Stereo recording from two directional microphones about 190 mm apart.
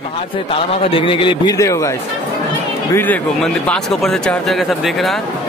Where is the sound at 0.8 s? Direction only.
30° left (ahead or behind).